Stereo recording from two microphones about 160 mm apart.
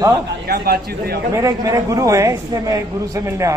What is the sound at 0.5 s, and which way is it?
Speech, 75° right (ahead or behind).